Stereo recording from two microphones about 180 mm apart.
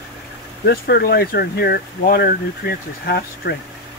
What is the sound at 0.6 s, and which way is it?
Speech, 60° left (ahead or behind).